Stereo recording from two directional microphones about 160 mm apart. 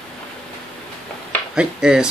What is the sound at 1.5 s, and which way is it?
Speech, 5° right (ahead or behind).